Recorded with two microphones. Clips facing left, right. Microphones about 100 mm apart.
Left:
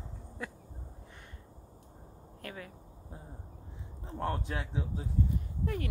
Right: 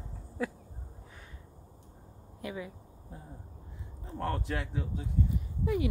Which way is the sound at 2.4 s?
10° right (ahead or behind).